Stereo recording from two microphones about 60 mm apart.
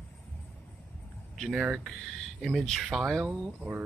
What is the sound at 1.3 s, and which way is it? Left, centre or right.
Speech, centre.